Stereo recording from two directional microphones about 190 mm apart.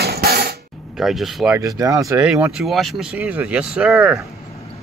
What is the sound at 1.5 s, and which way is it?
Speech, 20° right (ahead or behind).